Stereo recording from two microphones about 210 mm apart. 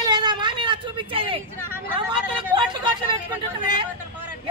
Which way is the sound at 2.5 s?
20° right (ahead or behind).